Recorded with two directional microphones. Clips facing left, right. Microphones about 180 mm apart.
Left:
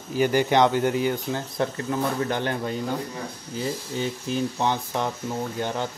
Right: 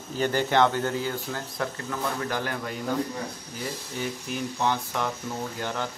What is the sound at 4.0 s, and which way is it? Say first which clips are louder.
Speech: left 4 dB; 20° left (ahead or behind).